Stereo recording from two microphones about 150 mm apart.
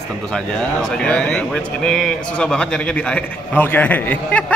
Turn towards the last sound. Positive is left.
turn(degrees=10)  # may be behind; listen again after turning